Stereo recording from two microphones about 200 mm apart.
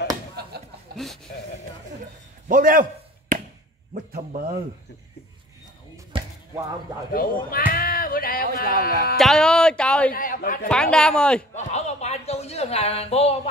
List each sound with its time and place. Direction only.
0.4 s a sound: 50° right (ahead or behind)
0.9 s speech: centre (ahead or behind)
2.4 s chop: 45° right (ahead or behind)
4.1 s speech: 45° right (ahead or behind)
6.1 s a sound: 25° right (ahead or behind)
7.1 s speech: 45° left (ahead or behind)
9.2 s speech: 5° left (ahead or behind)
10.1 s a man's voice: 45° left (ahead or behind)
10.7 s speech: 5° left (ahead or behind)
11.5 s a man's voice: 35° left (ahead or behind)